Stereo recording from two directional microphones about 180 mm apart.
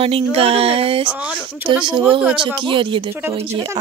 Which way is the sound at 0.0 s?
30° right (ahead or behind).